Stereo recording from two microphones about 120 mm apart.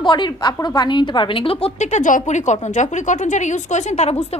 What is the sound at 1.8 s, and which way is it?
Speech, 85° left.